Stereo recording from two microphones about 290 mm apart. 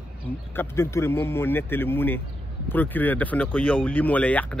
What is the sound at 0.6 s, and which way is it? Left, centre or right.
Speech, centre.